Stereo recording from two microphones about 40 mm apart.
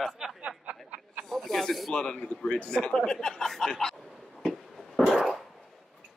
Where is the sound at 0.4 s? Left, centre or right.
Right.